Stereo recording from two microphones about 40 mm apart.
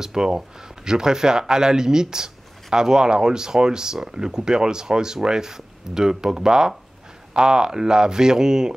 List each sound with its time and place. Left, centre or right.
0.0 s speech: centre